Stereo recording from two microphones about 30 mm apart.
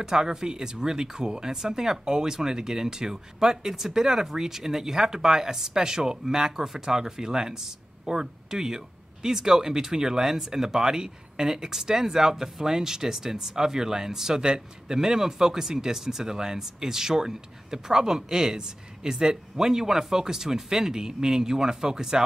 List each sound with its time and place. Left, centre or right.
0.0 s speech: centre